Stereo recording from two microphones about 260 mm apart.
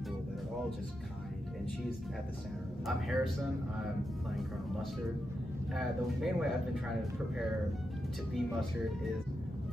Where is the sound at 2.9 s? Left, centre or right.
Centre.